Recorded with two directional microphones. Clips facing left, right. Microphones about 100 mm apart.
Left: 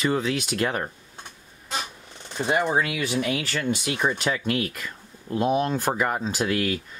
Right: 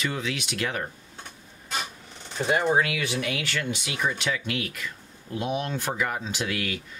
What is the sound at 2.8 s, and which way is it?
Speech, 35° left (ahead or behind).